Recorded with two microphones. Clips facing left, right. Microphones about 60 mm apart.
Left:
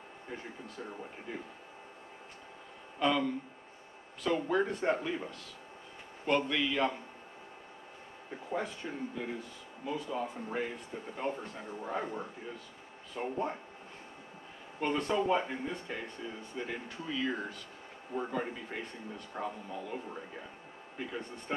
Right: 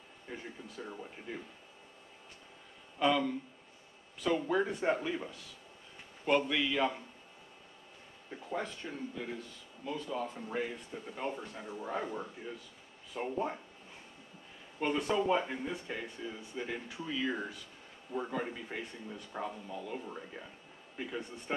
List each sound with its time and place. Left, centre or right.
0.3 s speech: centre
3.0 s speech: centre
4.4 s speech: centre
8.3 s speech: centre
14.8 s speech: centre
21.5 s speech: centre